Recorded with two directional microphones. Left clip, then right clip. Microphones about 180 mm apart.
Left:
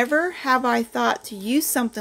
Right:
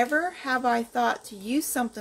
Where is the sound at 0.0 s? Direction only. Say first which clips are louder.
Left 4 dB; 40° left (ahead or behind).